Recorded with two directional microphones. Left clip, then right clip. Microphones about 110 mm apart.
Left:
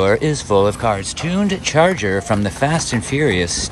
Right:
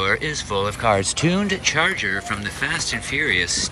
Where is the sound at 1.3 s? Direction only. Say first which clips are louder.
Left 7 dB; 30° left (ahead or behind).